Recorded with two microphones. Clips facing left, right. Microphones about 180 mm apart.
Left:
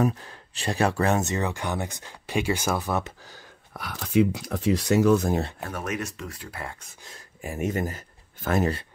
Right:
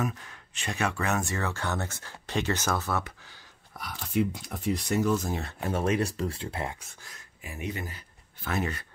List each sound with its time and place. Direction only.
0.0 s speech: 35° left (ahead or behind)
1.2 s speech: 20° left (ahead or behind)
3.7 s speech: 75° left (ahead or behind)
5.6 s speech: 25° right (ahead or behind)
7.4 s speech: 45° left (ahead or behind)